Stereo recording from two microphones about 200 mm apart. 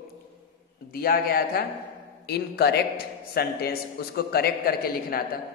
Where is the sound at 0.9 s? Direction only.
50° left (ahead or behind).